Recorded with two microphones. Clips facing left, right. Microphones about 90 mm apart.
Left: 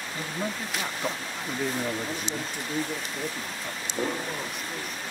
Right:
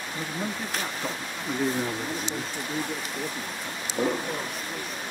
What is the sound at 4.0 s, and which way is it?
Speech, 15° right (ahead or behind).